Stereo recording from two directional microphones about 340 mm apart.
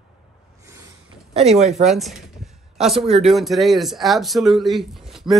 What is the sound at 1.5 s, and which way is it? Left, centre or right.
Speech, centre.